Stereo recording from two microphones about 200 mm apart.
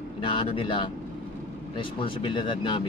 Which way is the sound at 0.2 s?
25° left (ahead or behind).